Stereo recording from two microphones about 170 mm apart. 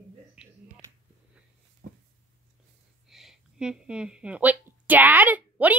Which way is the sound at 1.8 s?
55° right (ahead or behind).